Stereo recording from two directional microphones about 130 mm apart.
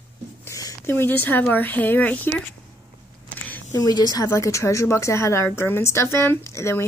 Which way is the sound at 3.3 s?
10° left (ahead or behind).